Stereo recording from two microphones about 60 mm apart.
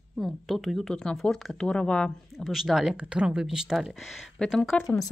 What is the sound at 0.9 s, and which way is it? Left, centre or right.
Speech, centre.